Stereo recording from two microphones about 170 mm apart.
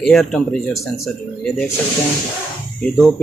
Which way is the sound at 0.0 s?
Centre (ahead or behind).